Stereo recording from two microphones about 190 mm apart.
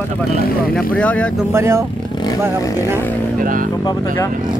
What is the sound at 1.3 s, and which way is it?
Speech, 15° right (ahead or behind).